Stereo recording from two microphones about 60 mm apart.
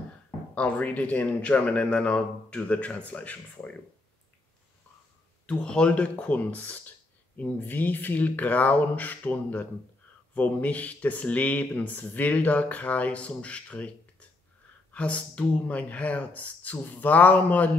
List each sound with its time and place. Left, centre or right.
0.6 s speech: left
5.5 s speech: centre